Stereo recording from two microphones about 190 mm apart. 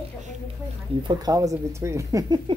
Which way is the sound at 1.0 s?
20° right (ahead or behind).